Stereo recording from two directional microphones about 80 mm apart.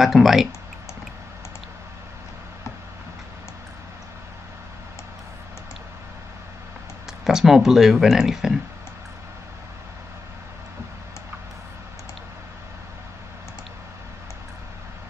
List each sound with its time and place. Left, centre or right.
0.0 s speech: centre
7.2 s speech: centre